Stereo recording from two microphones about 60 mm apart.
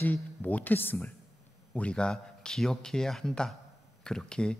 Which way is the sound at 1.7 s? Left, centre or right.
Centre.